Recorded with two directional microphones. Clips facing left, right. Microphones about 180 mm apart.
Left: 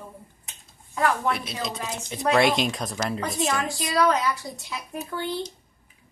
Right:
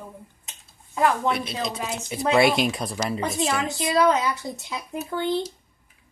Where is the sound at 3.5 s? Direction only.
20° right (ahead or behind).